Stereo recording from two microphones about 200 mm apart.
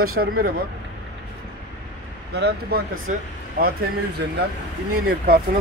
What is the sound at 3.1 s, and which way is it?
Speech, 40° right (ahead or behind).